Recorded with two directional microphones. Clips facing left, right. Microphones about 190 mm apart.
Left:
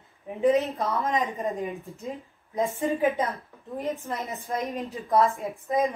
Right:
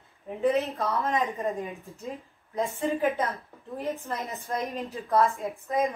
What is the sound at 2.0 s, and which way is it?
A woman's voice, 15° left (ahead or behind).